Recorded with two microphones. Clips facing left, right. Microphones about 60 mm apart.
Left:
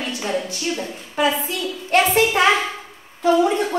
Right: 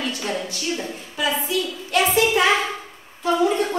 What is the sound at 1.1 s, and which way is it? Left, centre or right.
A woman's voice, left.